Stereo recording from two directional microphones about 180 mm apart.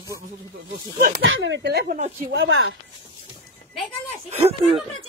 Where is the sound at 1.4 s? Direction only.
75° right (ahead or behind).